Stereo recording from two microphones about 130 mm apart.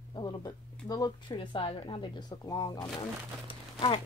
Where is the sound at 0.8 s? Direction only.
30° left (ahead or behind).